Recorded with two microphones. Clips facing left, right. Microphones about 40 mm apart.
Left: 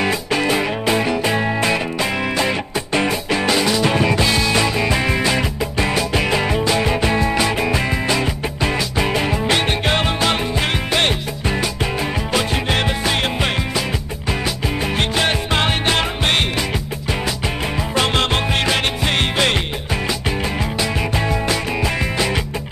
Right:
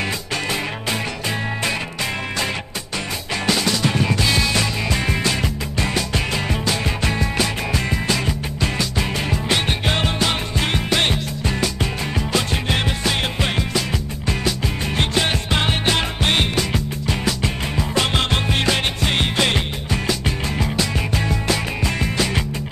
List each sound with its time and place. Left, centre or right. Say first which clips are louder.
0.0 s music: left 6 dB; centre
3.3 s music: left 4 dB; centre
15.0 s music: left 1 dB; centre
19.3 s music: left 2 dB; centre